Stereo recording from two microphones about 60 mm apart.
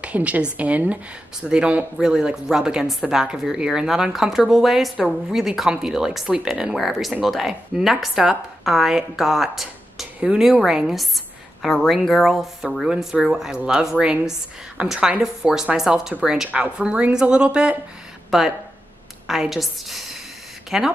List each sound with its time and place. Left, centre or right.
0.0 s a woman's voice: right
1.4 s a woman's voice: centre
11.6 s speech: centre
12.8 s a woman's voice: centre
18.3 s speech: centre
19.5 s a woman's voice: centre